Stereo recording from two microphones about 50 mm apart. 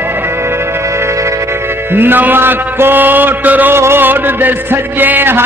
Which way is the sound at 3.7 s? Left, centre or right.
Right.